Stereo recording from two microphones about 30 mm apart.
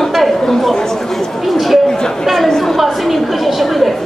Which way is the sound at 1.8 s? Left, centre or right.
Left.